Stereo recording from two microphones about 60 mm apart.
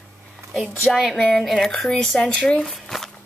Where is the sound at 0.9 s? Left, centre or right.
Centre.